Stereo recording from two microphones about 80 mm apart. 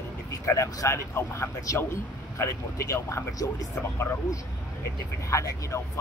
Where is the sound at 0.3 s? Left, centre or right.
Left.